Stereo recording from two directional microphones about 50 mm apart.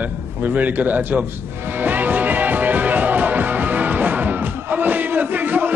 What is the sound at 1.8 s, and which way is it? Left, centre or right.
Music, right.